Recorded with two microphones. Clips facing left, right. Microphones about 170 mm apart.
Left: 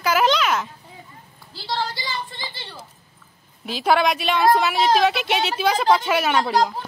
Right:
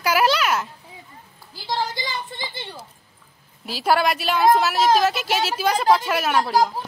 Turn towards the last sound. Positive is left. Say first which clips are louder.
# even
turn(degrees=-5)  # may be behind; listen again after turning